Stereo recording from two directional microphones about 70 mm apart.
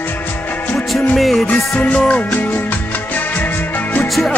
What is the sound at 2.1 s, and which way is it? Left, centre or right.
Music, left.